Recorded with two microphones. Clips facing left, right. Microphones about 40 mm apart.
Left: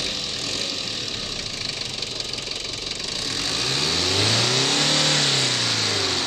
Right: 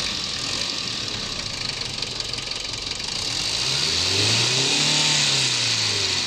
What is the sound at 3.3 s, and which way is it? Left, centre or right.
Vehicle, centre.